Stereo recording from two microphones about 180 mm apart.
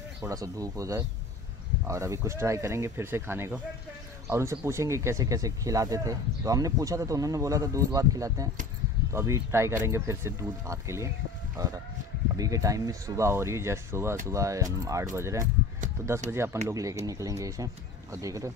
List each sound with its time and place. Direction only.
0.3 s speech: 20° right (ahead or behind)
11.5 s a sound: 20° right (ahead or behind)
12.4 s speech: 20° right (ahead or behind)